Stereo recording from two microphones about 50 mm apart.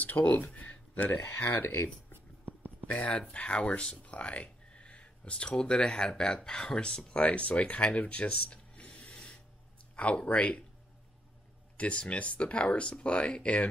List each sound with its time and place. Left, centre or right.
0.0 s speech: left
2.4 s a sound: right
2.9 s speech: left
11.7 s speech: left